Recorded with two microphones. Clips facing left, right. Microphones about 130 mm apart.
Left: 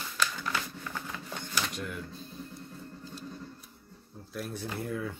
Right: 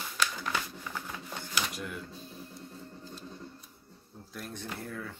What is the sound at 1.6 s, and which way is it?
Printer, 5° right (ahead or behind).